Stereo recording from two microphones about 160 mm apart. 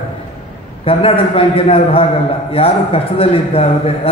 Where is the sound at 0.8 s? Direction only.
35° left (ahead or behind).